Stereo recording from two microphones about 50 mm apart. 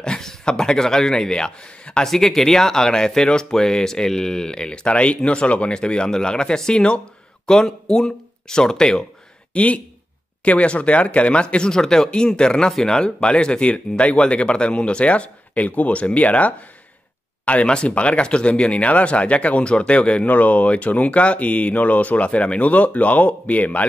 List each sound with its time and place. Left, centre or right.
0.0 s speech: centre
2.0 s speech: centre
9.5 s speech: left